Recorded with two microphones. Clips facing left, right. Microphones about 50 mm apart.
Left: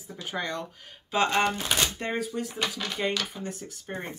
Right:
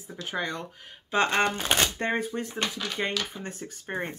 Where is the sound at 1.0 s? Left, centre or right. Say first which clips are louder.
Even; right.